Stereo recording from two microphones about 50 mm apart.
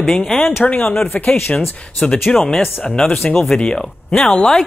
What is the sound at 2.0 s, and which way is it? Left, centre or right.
Speech, centre.